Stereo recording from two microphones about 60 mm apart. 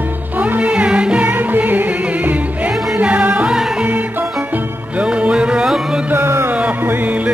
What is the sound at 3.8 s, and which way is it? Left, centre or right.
Music, right.